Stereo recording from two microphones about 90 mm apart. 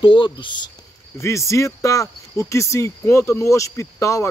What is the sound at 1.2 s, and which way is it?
Speech, 35° left (ahead or behind).